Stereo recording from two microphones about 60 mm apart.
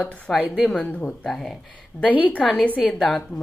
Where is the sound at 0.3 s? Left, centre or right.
Centre.